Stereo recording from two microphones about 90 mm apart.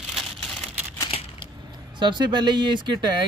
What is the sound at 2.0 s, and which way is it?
Speech, 55° right (ahead or behind).